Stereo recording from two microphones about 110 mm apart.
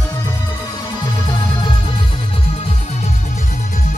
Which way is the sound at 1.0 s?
45° left (ahead or behind).